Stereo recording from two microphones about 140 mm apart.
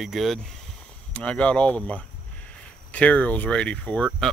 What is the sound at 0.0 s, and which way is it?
Speech, centre (ahead or behind).